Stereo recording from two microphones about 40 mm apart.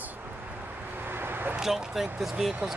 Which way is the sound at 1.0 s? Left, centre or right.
Right.